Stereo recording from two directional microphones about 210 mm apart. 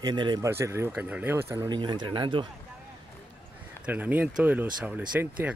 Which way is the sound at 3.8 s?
10° right (ahead or behind).